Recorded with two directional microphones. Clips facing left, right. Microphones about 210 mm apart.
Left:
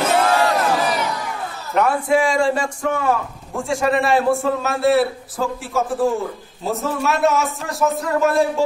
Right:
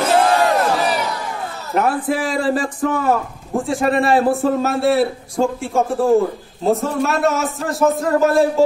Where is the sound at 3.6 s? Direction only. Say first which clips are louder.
Right 1 dB; centre (ahead or behind).